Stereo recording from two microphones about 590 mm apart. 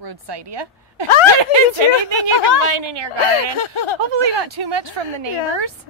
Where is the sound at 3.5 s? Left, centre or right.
Left.